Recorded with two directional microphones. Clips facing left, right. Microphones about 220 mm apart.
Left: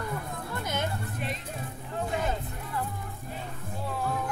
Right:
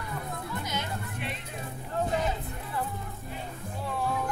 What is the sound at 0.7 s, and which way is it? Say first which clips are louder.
Vehicle: left 3 dB; 50° left (ahead or behind).